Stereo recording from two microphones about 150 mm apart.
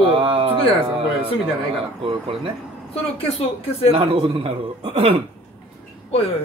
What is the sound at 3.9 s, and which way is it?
Speech, 40° right (ahead or behind).